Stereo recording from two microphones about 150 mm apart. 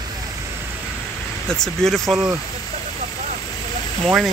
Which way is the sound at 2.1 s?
15° right (ahead or behind).